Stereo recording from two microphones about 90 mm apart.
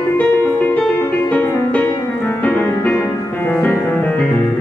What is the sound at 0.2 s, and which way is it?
Music, 15° left (ahead or behind).